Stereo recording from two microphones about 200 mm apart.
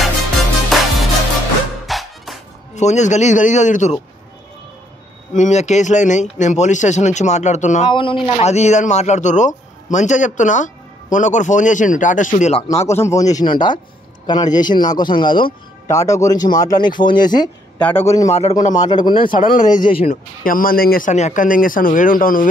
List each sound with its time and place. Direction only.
0.7 s music: centre (ahead or behind)
2.7 s a man's voice: 35° left (ahead or behind)
5.3 s a man's voice: 35° left (ahead or behind)
7.9 s a man's voice: 25° left (ahead or behind)
12.6 s a man's voice: 15° left (ahead or behind)
17.7 s a man's voice: 10° left (ahead or behind)
19.2 s speech: 45° left (ahead or behind)